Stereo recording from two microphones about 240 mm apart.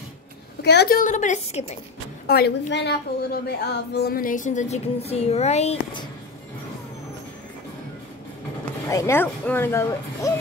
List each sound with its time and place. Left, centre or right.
0.6 s a woman's voice: left
2.2 s a woman's voice: left
8.8 s speech: centre